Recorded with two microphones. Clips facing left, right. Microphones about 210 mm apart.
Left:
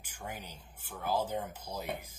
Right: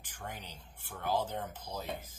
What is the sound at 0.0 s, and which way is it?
Speech, 10° left (ahead or behind).